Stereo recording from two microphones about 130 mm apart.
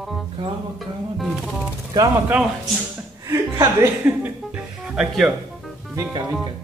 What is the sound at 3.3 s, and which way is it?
Speech, 20° right (ahead or behind).